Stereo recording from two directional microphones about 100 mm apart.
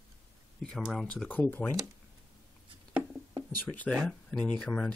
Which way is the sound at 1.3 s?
15° left (ahead or behind).